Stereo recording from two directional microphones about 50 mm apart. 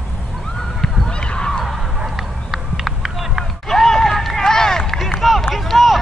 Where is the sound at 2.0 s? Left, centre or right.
Centre.